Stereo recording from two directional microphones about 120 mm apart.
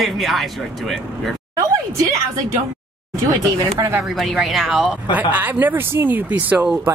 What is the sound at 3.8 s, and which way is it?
Speech, 35° right (ahead or behind).